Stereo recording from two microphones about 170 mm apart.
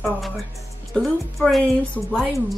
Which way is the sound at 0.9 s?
Centre (ahead or behind).